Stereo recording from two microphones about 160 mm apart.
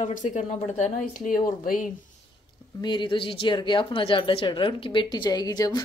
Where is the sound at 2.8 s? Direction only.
30° left (ahead or behind).